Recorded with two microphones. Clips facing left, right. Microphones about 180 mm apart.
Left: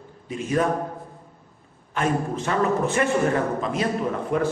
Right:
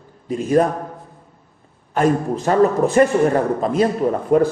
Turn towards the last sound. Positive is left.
turn(degrees=-35)  # may be behind; listen again after turning